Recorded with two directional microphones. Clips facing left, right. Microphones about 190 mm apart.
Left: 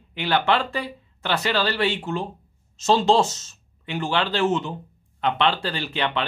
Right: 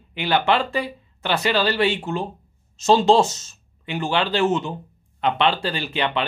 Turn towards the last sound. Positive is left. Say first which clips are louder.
# right 2 dB
turn(degrees=-15)  # may be behind; listen again after turning